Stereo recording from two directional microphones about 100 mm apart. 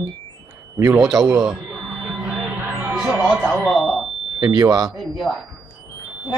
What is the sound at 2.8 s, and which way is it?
Speech, 10° right (ahead or behind).